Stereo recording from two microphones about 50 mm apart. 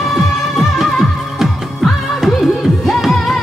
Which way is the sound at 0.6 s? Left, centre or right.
Centre.